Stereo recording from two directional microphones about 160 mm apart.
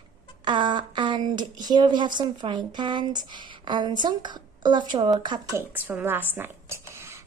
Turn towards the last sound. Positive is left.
turn(degrees=-15)  # may be behind; listen again after turning